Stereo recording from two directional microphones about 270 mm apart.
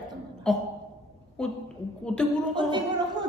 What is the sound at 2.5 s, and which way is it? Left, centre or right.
Speech, centre.